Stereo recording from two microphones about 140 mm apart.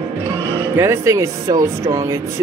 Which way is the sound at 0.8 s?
20° right (ahead or behind).